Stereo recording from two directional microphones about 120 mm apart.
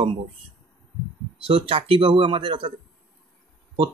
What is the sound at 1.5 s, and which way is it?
Speech, 50° right (ahead or behind).